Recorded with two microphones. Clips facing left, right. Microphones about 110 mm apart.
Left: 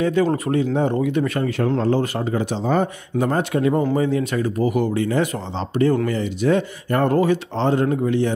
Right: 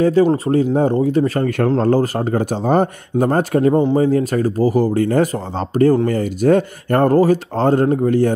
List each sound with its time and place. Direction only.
0.2 s speech: 25° right (ahead or behind)
0.7 s speech: 35° right (ahead or behind)
3.7 s speech: 30° right (ahead or behind)